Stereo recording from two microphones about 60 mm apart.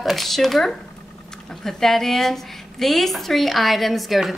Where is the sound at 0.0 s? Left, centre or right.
Centre.